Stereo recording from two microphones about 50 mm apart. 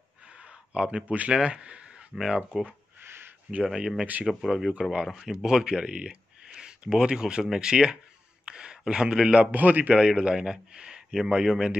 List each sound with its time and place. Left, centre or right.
0.4 s a sound: right
1.0 s speech: right
1.3 s speech: centre
2.1 s speech: centre
3.0 s a sound: right
3.6 s speech: centre
4.0 s speech: right
4.3 s a man's voice: centre; by 9.9 s right
9.9 s speech: centre